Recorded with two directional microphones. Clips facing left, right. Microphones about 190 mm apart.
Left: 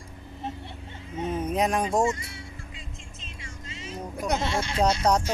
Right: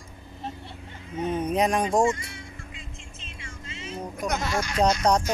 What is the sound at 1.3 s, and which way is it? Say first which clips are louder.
Speech: right 2 dB; centre (ahead or behind).